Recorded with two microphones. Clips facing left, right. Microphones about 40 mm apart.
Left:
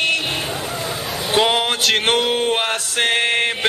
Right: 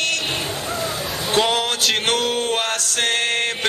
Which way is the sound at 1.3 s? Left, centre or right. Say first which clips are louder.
Left 2 dB; centre.